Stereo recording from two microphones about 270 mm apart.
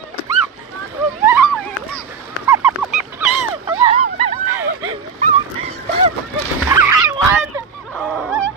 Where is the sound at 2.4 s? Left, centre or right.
Centre.